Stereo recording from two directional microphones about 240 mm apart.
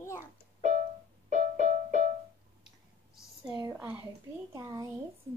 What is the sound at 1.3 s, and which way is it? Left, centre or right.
Music, right.